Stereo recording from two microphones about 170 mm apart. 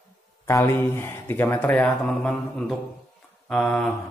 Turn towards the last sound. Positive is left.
turn(degrees=0)  # may be behind; listen again after turning